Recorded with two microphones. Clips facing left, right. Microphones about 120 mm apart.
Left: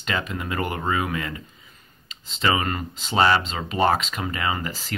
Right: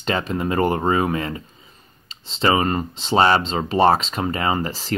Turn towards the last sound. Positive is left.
turn(degrees=-35)  # may be behind; listen again after turning